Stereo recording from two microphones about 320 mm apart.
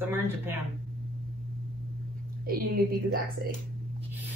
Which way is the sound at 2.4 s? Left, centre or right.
Right.